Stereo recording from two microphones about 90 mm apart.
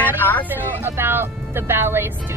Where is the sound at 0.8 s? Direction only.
25° right (ahead or behind).